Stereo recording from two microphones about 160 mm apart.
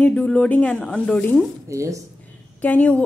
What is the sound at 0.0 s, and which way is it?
Speech, 5° left (ahead or behind).